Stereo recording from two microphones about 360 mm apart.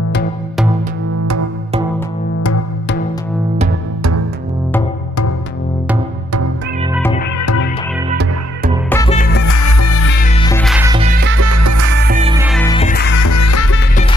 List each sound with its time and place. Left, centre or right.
8.1 s music: right
8.9 s music: centre
9.5 s music: left
10.0 s music: left
10.4 s music: centre; by 11.4 s right
11.4 s music: right
12.1 s music: centre
12.4 s music: centre
12.7 s music: left
13.2 s music: left